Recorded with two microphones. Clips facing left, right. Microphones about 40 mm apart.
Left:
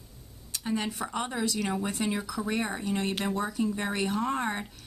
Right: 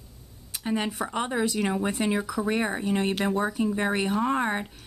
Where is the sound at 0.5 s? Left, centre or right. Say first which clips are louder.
Right 3 dB; centre.